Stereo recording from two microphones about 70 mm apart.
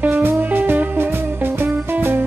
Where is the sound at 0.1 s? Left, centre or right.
Right.